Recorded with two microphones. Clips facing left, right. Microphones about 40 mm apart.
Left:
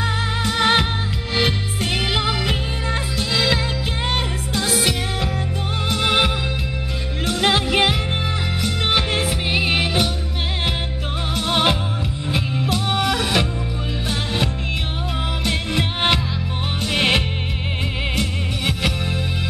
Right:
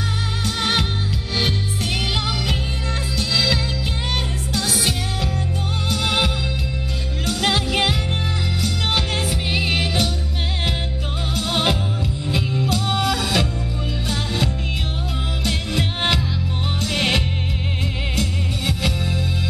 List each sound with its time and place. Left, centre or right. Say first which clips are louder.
0.5 s music: left 4 dB; left
11.3 s music: left 2 dB; left
18.7 s music: left 1 dB; left